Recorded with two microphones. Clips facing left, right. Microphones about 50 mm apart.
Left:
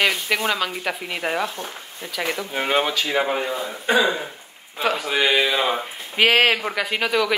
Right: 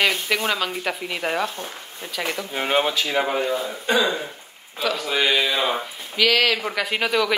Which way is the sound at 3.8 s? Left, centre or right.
Centre.